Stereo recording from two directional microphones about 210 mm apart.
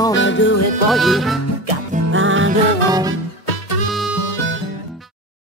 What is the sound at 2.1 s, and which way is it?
Music, 65° right (ahead or behind).